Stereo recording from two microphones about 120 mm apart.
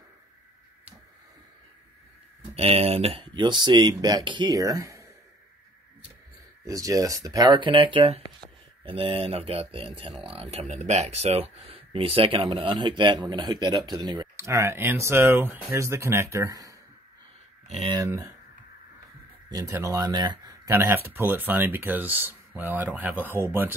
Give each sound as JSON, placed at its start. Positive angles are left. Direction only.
{"t": 2.5, "sound": "speech", "side_deg": -55}
{"t": 6.6, "sound": "speech", "side_deg": -30}
{"t": 14.3, "sound": "speech", "side_deg": -25}
{"t": 17.6, "sound": "speech", "side_deg": -60}
{"t": 17.9, "sound": "speech", "side_deg": -25}
{"t": 19.5, "sound": "speech", "side_deg": -25}
{"t": 20.7, "sound": "speech", "side_deg": -20}